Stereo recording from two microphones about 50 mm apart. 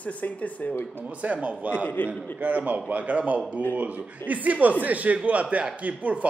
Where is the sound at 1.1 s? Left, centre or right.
Right.